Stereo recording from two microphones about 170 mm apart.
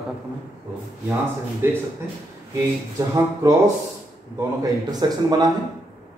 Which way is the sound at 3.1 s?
20° right (ahead or behind).